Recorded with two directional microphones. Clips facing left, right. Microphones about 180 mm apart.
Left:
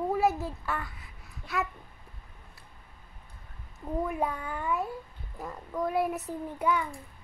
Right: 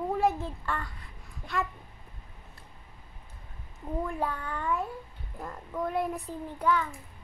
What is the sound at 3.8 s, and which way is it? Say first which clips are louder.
A child's voice: left 2 dB; 5° left (ahead or behind).